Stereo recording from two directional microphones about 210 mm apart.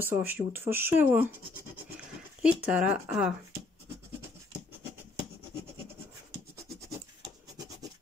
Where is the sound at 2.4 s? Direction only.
5° right (ahead or behind).